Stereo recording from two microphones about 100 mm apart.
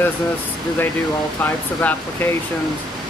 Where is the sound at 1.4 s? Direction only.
15° left (ahead or behind).